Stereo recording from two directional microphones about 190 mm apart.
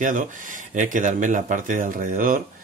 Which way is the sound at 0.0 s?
45° right (ahead or behind).